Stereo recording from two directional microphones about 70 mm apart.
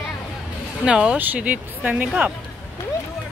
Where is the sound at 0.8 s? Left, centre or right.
Centre.